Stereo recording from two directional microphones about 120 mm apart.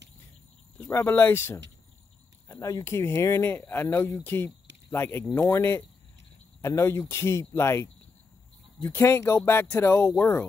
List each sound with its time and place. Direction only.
0.7 s speech: 20° left (ahead or behind)